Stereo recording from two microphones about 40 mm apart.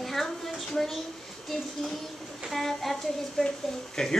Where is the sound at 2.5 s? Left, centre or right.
Centre.